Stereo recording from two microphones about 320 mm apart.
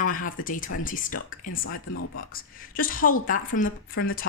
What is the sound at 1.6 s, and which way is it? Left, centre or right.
Speech, left.